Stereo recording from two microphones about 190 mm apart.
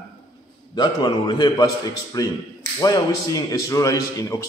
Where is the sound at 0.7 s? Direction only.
25° left (ahead or behind).